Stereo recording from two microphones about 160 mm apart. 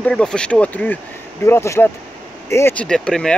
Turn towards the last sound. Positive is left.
turn(degrees=5)  # may be behind; listen again after turning